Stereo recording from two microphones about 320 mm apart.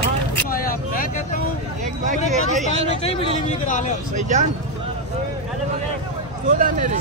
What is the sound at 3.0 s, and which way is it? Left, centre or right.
Speech, centre.